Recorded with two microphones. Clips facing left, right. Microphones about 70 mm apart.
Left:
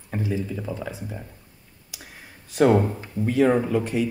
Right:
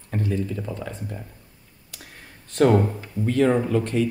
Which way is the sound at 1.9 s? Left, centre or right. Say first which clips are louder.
Left 1 dB; centre.